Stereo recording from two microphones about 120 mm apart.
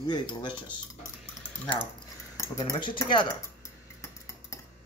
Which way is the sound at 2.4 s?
35° left (ahead or behind).